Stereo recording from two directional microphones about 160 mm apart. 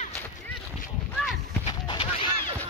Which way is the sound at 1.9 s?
35° left (ahead or behind).